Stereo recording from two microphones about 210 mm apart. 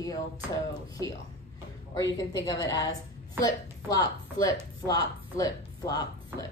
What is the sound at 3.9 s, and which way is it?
Speech, 15° left (ahead or behind).